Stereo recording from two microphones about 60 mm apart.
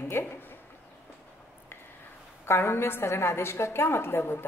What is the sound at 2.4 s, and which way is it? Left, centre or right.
A woman's voice, left.